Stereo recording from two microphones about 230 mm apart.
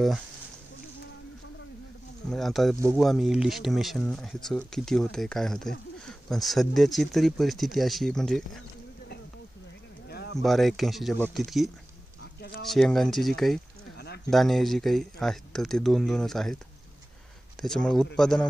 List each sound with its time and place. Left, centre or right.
2.3 s speech: centre
10.0 s a sound: left
10.4 s speech: centre
13.9 s a sound: left
14.3 s speech: centre
17.6 s speech: centre